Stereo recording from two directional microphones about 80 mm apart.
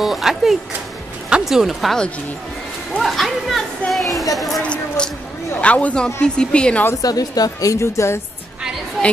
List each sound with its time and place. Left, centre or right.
0.0 s speech: centre
3.0 s speech: centre
3.9 s a sound: centre
4.6 s a sound: centre
5.6 s speech: centre
7.0 s speech: left